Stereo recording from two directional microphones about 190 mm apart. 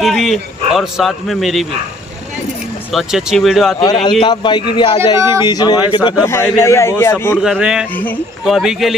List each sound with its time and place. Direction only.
0.0 s a man's voice: centre (ahead or behind)
2.9 s speech: centre (ahead or behind)
3.8 s a man's voice: 20° left (ahead or behind)
7.4 s speech: 5° right (ahead or behind)
7.9 s speech: 10° left (ahead or behind)
8.5 s speech: centre (ahead or behind)